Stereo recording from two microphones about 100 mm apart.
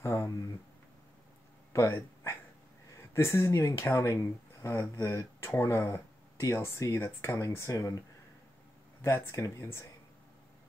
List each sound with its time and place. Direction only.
0.0 s a sound: 25° left (ahead or behind)
1.7 s speech: 30° left (ahead or behind)
9.0 s speech: 30° left (ahead or behind)